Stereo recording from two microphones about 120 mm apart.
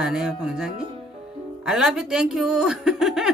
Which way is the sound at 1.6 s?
5° right (ahead or behind).